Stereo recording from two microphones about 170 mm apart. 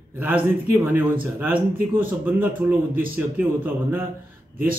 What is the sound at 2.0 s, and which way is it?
Speech, 10° right (ahead or behind).